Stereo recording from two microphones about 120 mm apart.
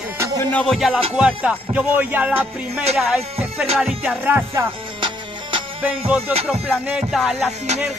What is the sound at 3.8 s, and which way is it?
Music, 10° right (ahead or behind).